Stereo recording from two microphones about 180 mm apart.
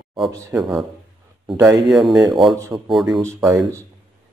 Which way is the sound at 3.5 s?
15° right (ahead or behind).